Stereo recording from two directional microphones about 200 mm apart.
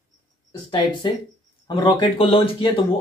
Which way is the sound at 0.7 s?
25° left (ahead or behind).